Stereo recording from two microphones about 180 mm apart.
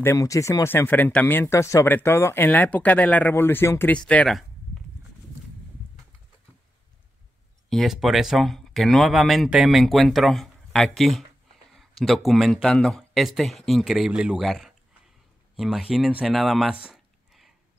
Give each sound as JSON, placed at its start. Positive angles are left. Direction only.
{"t": 0.0, "sound": "speech", "side_deg": 15}
{"t": 7.7, "sound": "speech", "side_deg": 0}
{"t": 16.8, "sound": "a sound", "side_deg": 0}